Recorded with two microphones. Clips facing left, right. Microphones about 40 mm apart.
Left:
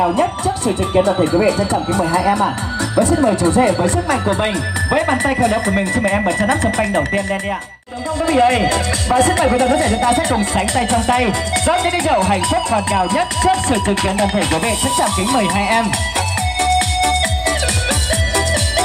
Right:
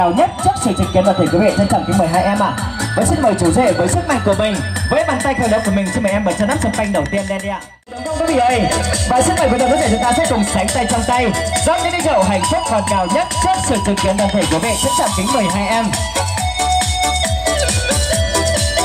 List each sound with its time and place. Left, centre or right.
1.0 s speech: right
3.8 s speech: centre
8.3 s speech: left
16.6 s music: centre